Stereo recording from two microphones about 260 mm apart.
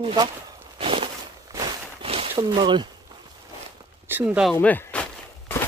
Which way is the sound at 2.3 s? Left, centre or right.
Centre.